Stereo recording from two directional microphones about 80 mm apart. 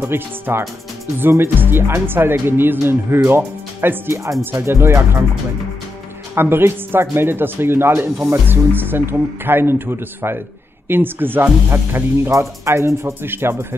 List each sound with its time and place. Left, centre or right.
0.0 s speech: right
6.3 s speech: right
12.3 s speech: right